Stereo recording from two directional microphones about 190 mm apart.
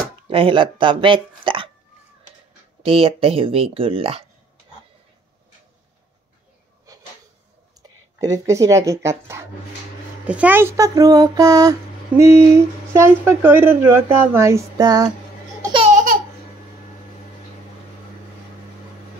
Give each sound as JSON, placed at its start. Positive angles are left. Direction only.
{"t": 0.3, "sound": "speech", "side_deg": -25}
{"t": 2.8, "sound": "speech", "side_deg": -30}
{"t": 6.9, "sound": "a sound", "side_deg": -15}
{"t": 7.8, "sound": "speech", "side_deg": -20}
{"t": 15.6, "sound": "laughter", "side_deg": -25}
{"t": 15.9, "sound": "laughter", "side_deg": -45}